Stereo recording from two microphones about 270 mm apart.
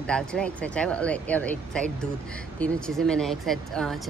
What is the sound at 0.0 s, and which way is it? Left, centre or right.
Speech, centre.